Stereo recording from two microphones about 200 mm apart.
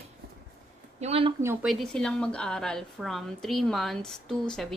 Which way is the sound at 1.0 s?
30° right (ahead or behind).